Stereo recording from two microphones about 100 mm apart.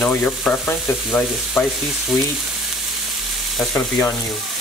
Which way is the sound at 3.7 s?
25° left (ahead or behind).